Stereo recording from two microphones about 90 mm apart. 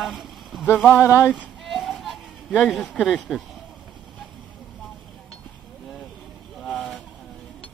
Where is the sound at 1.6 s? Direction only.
Centre (ahead or behind).